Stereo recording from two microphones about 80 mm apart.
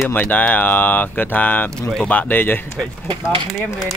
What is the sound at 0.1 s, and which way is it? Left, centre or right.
Speech, left.